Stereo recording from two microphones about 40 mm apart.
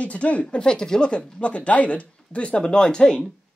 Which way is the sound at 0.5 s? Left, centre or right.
Left.